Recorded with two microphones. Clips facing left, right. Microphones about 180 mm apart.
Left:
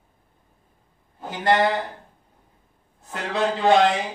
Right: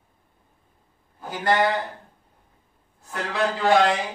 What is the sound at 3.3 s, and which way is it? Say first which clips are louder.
Speech: left 2 dB; 20° left (ahead or behind).